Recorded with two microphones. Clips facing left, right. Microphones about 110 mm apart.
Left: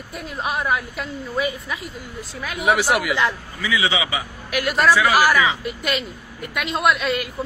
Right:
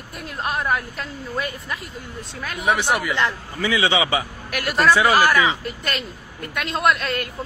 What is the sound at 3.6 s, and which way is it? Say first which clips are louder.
Speech: right 3 dB; 30° right (ahead or behind).